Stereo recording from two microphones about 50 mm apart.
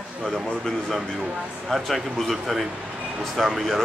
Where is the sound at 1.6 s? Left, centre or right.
Centre.